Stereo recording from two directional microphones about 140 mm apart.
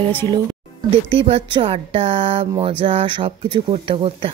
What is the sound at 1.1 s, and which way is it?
Speech, 40° right (ahead or behind).